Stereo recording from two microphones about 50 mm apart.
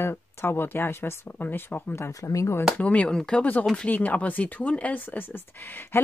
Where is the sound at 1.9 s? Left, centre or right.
Left.